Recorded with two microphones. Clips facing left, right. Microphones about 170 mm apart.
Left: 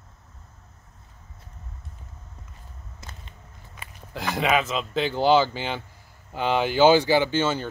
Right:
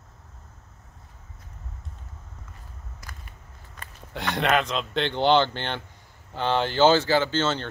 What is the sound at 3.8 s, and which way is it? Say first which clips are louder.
Speech: even; centre (ahead or behind).